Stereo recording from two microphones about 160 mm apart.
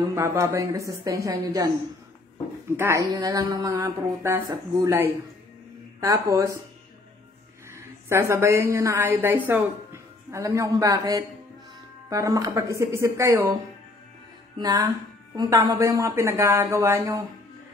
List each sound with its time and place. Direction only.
0.0 s speech: 20° right (ahead or behind)
2.8 s speech: 20° right (ahead or behind)
8.1 s a man's voice: 15° right (ahead or behind)
14.6 s speech: 25° right (ahead or behind)